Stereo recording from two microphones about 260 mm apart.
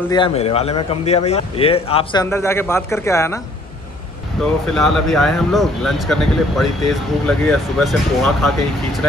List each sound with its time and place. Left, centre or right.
0.1 s a man's voice: centre
2.2 s a man's voice: centre
4.4 s speech: centre